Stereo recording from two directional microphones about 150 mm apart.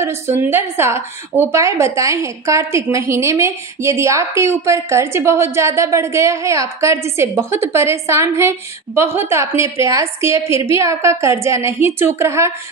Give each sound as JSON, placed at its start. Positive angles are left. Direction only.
{"t": 0.4, "sound": "a woman's voice", "side_deg": -15}